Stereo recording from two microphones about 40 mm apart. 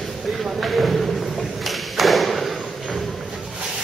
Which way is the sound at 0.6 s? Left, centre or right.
Centre.